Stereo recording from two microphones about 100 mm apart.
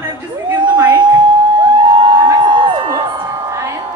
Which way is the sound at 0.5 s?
45° right (ahead or behind).